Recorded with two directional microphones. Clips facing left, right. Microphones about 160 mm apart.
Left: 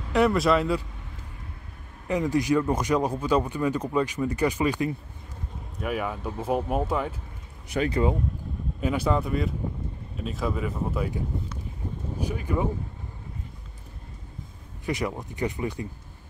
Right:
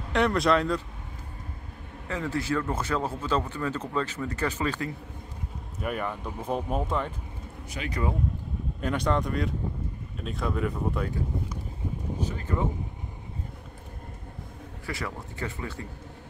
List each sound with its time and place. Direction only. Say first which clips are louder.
0.1 s speech: left 2 dB; 5° left (ahead or behind)
2.0 s a man's voice: left 6 dB; 15° left (ahead or behind)
5.8 s a man's voice: left 2 dB; 5° left (ahead or behind)
7.8 s speech: left 10 dB; 55° left (ahead or behind)
8.8 s speech: left 2 dB; 5° left (ahead or behind)
12.2 s a man's voice: left 3 dB; 15° left (ahead or behind)
14.9 s a man's voice: left 6 dB; 20° left (ahead or behind)